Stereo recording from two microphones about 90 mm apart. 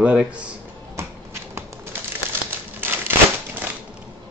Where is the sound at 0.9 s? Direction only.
30° right (ahead or behind).